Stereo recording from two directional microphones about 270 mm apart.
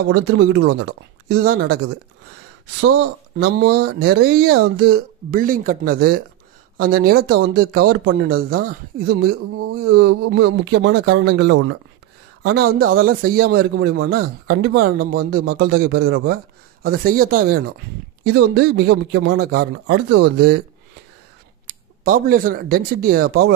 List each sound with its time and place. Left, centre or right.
0.1 s a man's voice: right
2.8 s a man's voice: right
10.4 s speech: right
11.1 s a man's voice: right
22.0 s a man's voice: right